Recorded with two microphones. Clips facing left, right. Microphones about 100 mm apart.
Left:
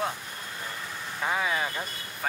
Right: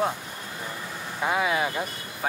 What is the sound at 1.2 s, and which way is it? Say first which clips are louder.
Speech: right 4 dB; 10° right (ahead or behind).